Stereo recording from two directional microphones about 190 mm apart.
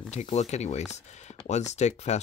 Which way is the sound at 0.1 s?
35° left (ahead or behind).